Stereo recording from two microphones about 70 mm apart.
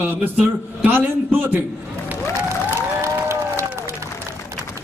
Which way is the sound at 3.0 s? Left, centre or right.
Right.